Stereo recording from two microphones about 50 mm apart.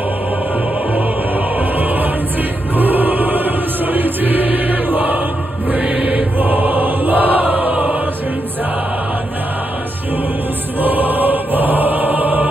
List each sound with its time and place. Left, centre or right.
2.8 s chant: right
5.7 s music: right
10.8 s music: right